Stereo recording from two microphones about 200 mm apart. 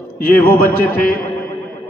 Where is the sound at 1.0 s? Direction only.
50° left (ahead or behind).